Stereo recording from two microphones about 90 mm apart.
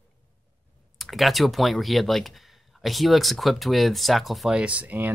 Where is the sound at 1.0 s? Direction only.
Centre (ahead or behind).